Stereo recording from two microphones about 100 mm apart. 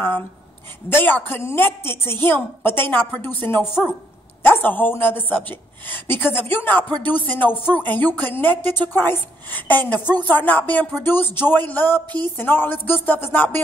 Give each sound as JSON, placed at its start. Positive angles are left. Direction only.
{"t": 0.8, "sound": "a woman's voice", "side_deg": 20}